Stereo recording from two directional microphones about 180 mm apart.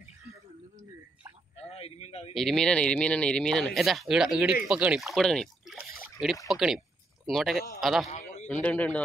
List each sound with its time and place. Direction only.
1.6 s a man's voice: 35° left (ahead or behind)
2.3 s speech: 5° left (ahead or behind)
8.1 s a sound: 40° left (ahead or behind)
8.5 s a man's voice: 10° left (ahead or behind)